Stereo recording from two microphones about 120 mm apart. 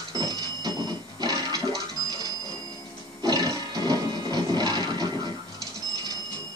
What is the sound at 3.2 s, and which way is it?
Music, 35° right (ahead or behind).